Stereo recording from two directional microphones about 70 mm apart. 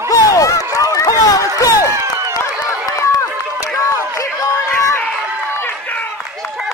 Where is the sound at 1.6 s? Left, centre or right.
Left.